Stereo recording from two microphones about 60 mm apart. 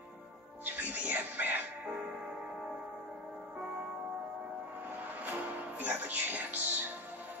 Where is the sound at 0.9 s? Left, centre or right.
Right.